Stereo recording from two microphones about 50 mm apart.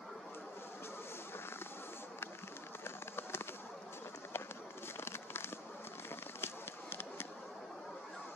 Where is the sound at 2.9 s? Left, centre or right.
Left.